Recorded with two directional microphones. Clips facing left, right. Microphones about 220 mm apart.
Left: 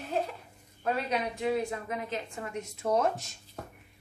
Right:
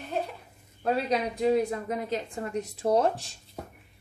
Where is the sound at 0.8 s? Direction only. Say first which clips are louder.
Right 4 dB; 35° right (ahead or behind).